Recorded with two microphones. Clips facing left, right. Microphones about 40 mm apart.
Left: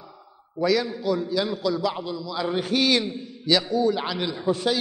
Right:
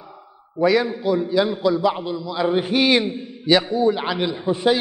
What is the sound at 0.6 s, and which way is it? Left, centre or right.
A man's voice, right.